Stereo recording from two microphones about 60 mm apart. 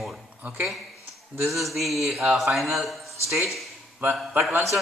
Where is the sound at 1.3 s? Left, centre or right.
Centre.